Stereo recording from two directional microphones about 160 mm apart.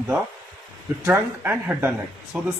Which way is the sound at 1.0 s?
10° right (ahead or behind).